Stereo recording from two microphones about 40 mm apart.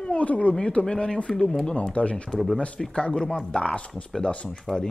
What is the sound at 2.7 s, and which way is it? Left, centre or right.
Speech, centre.